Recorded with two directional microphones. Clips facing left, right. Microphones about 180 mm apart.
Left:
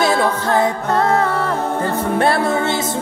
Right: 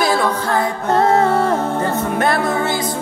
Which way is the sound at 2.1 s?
30° left (ahead or behind).